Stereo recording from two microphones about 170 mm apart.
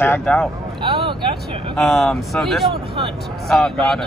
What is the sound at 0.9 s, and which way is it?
Vehicle, 30° right (ahead or behind).